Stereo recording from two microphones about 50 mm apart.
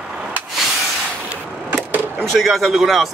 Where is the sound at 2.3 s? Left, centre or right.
Centre.